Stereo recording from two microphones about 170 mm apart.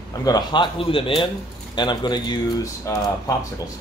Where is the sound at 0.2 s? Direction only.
25° left (ahead or behind).